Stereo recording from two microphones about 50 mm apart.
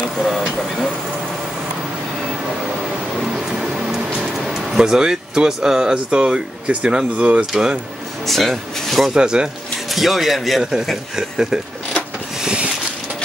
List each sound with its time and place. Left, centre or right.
0.2 s speech: centre
3.2 s a sound: centre
8.3 s speech: centre
9.1 s speech: centre
9.8 s speech: centre
11.1 s speech: centre
12.4 s a sound: centre